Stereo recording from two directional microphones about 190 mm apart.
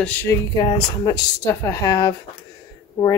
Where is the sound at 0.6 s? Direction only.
20° left (ahead or behind).